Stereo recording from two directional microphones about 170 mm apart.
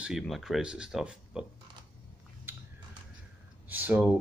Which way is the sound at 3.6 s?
10° right (ahead or behind).